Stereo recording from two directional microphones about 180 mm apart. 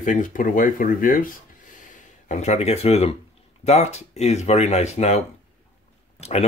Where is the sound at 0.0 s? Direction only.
45° left (ahead or behind).